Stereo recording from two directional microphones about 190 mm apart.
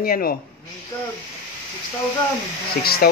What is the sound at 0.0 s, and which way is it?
Speech, 50° left (ahead or behind).